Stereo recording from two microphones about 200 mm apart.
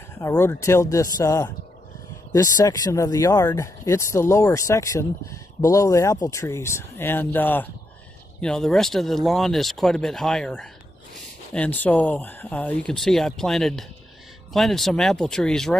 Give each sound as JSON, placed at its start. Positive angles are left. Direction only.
{"t": 0.2, "sound": "speech", "side_deg": 15}